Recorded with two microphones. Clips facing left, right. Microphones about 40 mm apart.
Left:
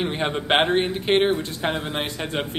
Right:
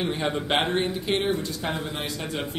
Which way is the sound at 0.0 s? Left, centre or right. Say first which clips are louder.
Left 2 dB; left.